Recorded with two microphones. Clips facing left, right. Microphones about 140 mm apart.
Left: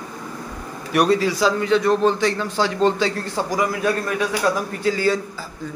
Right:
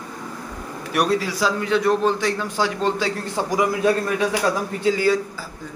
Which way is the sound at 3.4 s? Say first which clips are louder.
Right 2 dB; 20° right (ahead or behind).